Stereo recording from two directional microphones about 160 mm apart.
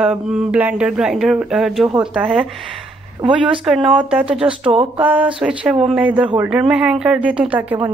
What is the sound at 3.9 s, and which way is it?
Speech, 10° right (ahead or behind).